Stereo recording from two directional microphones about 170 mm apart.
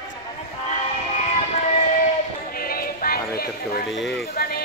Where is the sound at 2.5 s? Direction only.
60° left (ahead or behind).